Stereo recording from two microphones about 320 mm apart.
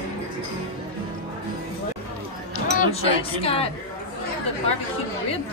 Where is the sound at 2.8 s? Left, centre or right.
Centre.